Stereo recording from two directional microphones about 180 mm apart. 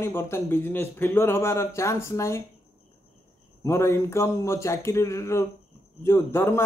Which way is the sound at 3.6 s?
15° left (ahead or behind).